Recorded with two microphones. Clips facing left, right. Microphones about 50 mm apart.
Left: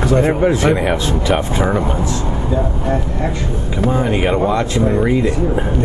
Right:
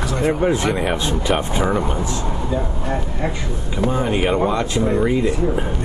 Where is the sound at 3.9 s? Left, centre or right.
Centre.